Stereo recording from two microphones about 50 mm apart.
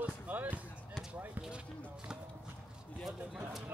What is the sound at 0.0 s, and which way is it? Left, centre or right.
Basketball bounce, right.